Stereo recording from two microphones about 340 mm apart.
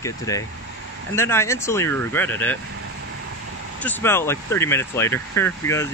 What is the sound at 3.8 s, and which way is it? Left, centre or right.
Speech, centre.